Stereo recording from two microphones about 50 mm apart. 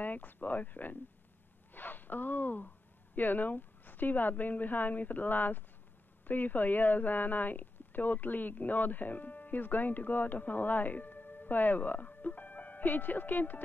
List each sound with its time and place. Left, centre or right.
0.0 s speech: left